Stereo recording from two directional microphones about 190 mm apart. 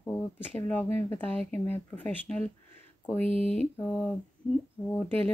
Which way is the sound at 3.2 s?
30° right (ahead or behind).